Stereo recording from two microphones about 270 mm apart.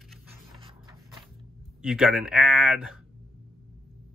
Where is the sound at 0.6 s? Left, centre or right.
Centre.